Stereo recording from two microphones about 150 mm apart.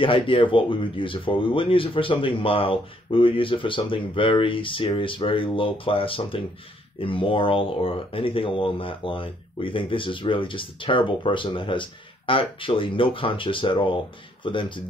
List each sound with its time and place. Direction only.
0.0 s speech: 35° left (ahead or behind)